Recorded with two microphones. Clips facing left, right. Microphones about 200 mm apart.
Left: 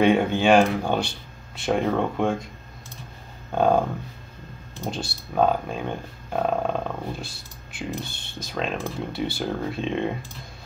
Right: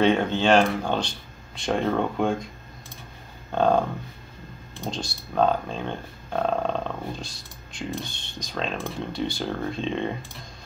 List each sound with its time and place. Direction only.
0.0 s speech: 10° left (ahead or behind)
3.5 s speech: 10° left (ahead or behind)
4.8 s speech: 5° left (ahead or behind)